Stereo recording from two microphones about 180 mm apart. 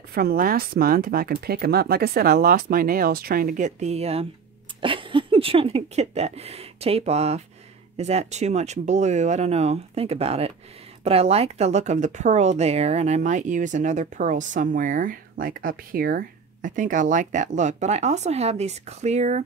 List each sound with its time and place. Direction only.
0.1 s speech: 55° right (ahead or behind); by 19.4 s 40° right (ahead or behind)